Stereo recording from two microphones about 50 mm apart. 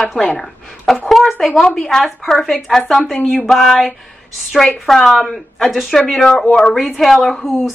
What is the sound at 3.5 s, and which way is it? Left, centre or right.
Speech, centre.